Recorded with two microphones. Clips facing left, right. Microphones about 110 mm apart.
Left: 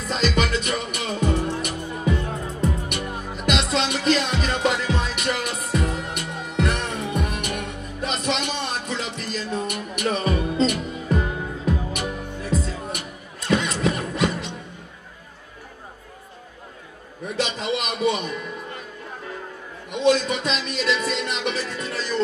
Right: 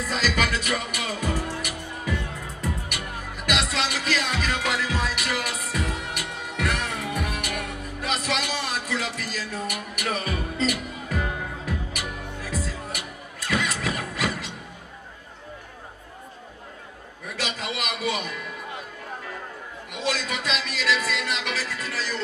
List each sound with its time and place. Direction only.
0.1 s music: 25° left (ahead or behind)
17.2 s a sound: 25° left (ahead or behind)
19.9 s music: 25° left (ahead or behind)